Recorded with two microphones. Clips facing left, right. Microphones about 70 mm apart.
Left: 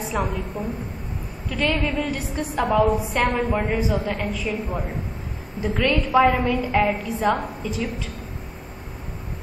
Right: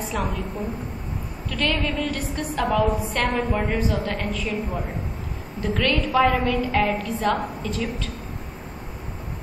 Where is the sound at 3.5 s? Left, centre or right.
Centre.